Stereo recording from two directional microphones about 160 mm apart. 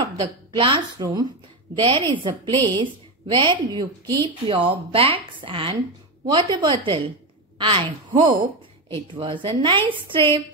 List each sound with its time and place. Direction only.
0.6 s a woman's voice: 30° right (ahead or behind)